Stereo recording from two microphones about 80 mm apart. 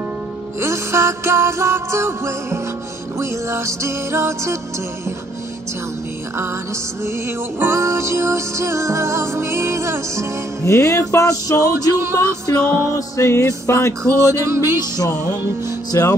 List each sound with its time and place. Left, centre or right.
0.6 s music: right
6.3 s music: right
10.6 s music: left
11.7 s music: right
13.1 s music: left
14.3 s music: right
15.9 s music: left